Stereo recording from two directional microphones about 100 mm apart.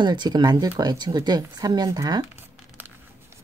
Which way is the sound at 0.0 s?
50° right (ahead or behind).